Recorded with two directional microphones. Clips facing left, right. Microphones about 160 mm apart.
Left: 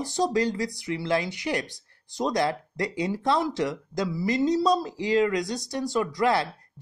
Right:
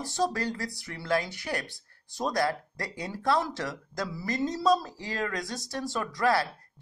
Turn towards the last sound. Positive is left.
turn(degrees=20)  # may be behind; listen again after turning